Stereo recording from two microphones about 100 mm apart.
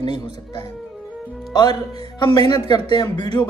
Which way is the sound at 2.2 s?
45° left (ahead or behind).